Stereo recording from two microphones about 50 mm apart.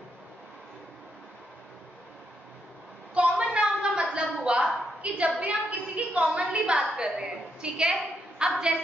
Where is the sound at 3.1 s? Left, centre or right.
Right.